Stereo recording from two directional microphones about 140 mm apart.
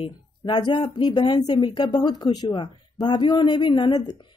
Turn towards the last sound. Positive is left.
turn(degrees=30)  # may be behind; listen again after turning